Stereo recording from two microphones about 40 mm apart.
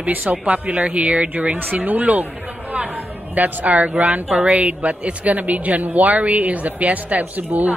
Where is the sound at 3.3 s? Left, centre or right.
Right.